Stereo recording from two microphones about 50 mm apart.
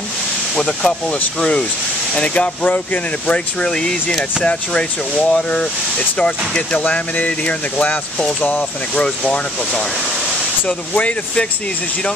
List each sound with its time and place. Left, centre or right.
0.6 s speech: centre; by 3.0 s left
3.3 s speech: left
6.8 s speech: left
8.2 s speech: centre
8.5 s speech: left
11.0 s speech: left